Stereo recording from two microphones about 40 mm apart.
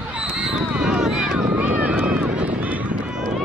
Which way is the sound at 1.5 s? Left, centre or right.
Right.